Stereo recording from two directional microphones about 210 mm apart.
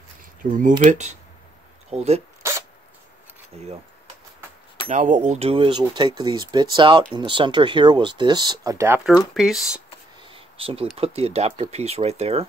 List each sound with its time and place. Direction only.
0.4 s speech: 40° right (ahead or behind)
4.8 s speech: 35° right (ahead or behind); by 9.8 s centre (ahead or behind)
10.3 s a sound: 25° right (ahead or behind)
11.0 s speech: 30° right (ahead or behind)